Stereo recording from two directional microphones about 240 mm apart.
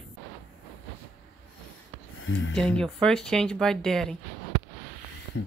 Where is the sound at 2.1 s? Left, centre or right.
Left.